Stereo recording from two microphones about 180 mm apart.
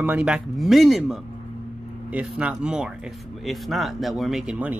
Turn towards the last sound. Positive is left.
turn(degrees=-5)  # may be behind; listen again after turning